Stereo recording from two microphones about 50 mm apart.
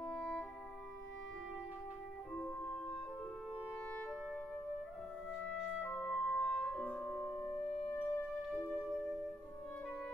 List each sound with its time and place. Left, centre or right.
0.0 s music: centre
2.4 s music: centre
5.8 s music: centre
6.0 s music: centre
7.9 s music: left